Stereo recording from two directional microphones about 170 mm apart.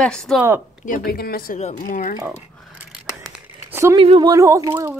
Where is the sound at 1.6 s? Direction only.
45° left (ahead or behind).